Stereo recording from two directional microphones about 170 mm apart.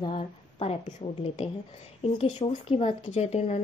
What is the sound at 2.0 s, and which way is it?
A woman's voice, 35° left (ahead or behind).